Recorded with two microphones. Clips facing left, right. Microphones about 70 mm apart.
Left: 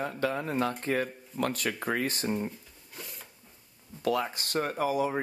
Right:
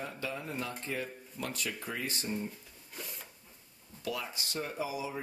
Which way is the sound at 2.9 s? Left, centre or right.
Centre.